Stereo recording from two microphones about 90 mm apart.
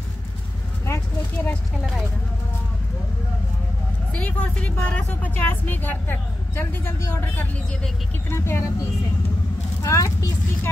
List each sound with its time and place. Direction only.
0.8 s vehicle: 30° left (ahead or behind)
4.1 s speech: 15° left (ahead or behind)
9.8 s speech: 35° left (ahead or behind)